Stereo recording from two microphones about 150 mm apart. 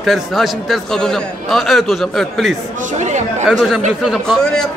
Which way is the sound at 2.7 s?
55° right (ahead or behind).